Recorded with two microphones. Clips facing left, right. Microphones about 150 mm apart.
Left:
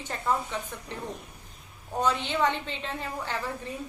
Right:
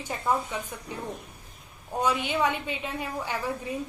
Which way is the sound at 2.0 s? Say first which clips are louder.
Even; 10° right (ahead or behind).